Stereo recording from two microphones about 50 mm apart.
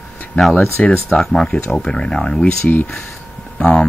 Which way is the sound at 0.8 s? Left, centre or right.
Centre.